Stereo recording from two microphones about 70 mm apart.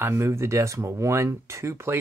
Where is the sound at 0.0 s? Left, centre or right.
Right.